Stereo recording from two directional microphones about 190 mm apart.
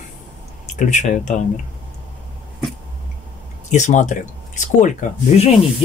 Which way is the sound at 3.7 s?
40° left (ahead or behind).